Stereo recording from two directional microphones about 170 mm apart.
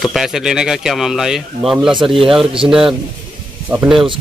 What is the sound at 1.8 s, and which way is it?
Speech, 30° right (ahead or behind).